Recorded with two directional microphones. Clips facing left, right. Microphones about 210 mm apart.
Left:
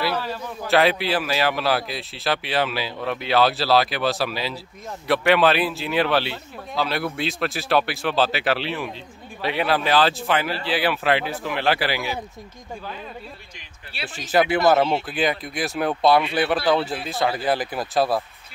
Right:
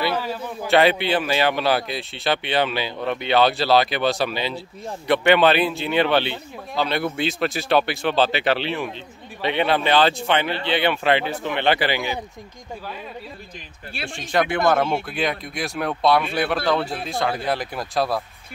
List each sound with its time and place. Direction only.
0.0 s a man's voice: 10° right (ahead or behind)
14.0 s a man's voice: 5° left (ahead or behind)